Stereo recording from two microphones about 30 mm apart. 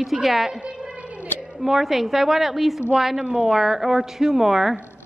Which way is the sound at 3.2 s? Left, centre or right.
Right.